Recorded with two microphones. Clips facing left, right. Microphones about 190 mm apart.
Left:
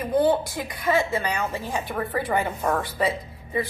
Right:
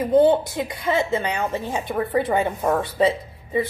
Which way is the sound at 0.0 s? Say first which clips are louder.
Right 5 dB; 25° right (ahead or behind).